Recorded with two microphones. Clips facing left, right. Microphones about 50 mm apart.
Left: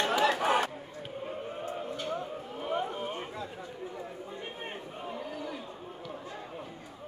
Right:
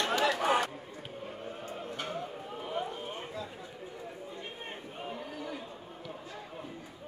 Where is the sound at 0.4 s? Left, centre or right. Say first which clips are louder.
Left 1 dB; centre.